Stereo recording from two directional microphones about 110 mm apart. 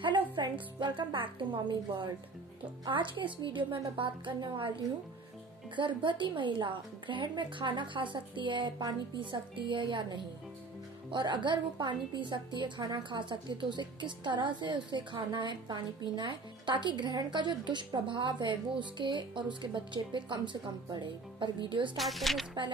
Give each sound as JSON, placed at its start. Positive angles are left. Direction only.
{"t": 0.0, "sound": "a woman's voice", "side_deg": -45}
{"t": 5.8, "sound": "a woman's voice", "side_deg": -45}
{"t": 21.9, "sound": "speech", "side_deg": 0}